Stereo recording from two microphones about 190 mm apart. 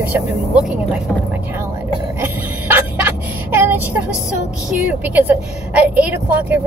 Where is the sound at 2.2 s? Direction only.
10° right (ahead or behind).